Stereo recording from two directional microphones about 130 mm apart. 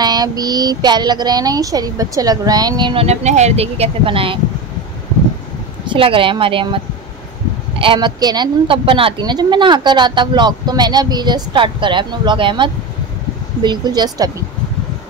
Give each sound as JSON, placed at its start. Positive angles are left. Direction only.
{"t": 0.0, "sound": "speech", "side_deg": -30}
{"t": 3.1, "sound": "speech", "side_deg": -60}
{"t": 5.9, "sound": "speech", "side_deg": -45}
{"t": 7.8, "sound": "a woman's voice", "side_deg": -35}